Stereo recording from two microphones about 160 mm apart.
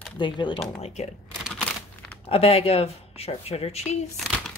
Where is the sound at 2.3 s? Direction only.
40° left (ahead or behind).